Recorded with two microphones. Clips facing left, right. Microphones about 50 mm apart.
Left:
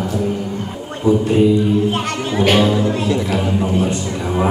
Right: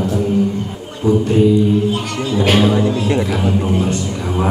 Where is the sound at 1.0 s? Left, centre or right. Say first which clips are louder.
Even; centre.